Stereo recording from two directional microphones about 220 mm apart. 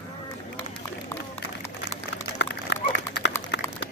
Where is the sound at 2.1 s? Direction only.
50° left (ahead or behind).